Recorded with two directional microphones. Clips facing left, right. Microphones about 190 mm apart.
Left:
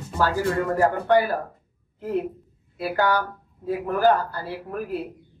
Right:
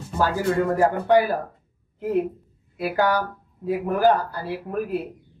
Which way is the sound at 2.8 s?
15° right (ahead or behind).